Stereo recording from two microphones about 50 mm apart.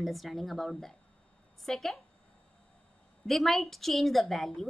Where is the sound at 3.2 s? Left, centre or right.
Centre.